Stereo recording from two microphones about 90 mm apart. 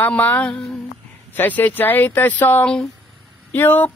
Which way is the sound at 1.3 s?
20° left (ahead or behind).